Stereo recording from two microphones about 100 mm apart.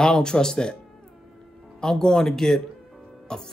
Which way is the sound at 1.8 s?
5° left (ahead or behind).